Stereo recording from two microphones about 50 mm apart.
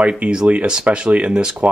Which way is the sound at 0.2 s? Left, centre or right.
Right.